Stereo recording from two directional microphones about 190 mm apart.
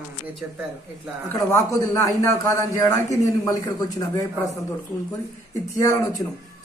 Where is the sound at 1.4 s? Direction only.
20° left (ahead or behind).